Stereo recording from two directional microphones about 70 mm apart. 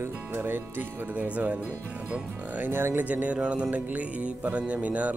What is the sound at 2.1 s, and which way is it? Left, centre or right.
Music, right.